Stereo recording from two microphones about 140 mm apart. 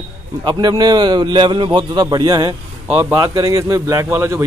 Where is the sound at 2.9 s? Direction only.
15° right (ahead or behind).